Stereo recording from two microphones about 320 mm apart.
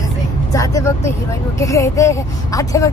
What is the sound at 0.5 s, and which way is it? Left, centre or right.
Speech, centre.